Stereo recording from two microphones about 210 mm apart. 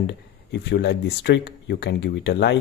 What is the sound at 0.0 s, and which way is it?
Speech, 55° left (ahead or behind).